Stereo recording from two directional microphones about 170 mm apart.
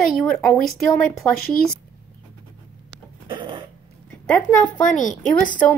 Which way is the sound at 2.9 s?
30° right (ahead or behind).